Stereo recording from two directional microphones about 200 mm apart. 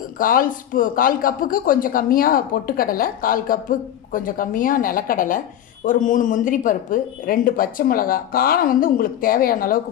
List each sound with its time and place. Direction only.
0.2 s speech: 45° left (ahead or behind)